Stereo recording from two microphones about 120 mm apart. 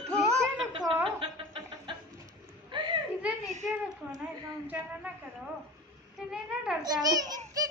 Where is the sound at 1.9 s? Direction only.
45° right (ahead or behind).